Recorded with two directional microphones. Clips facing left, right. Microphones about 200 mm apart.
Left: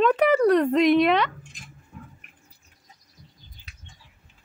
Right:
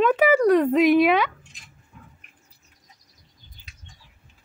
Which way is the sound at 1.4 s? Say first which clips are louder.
Left 7 dB; 45° left (ahead or behind).